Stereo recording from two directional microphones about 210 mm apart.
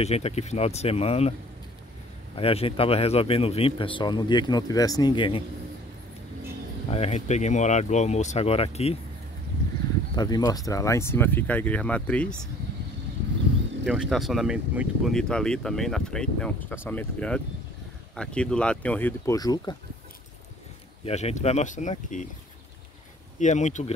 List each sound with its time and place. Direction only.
0.0 s a man's voice: 30° left (ahead or behind)
2.3 s a man's voice: 25° left (ahead or behind)
6.9 s speech: 30° left (ahead or behind)
10.1 s speech: 20° left (ahead or behind)
13.8 s speech: 5° right (ahead or behind); by 19.8 s 20° left (ahead or behind)
21.0 s speech: 30° left (ahead or behind)
23.4 s speech: 35° left (ahead or behind)